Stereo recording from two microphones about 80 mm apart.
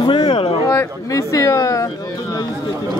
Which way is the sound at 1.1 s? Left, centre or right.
Left.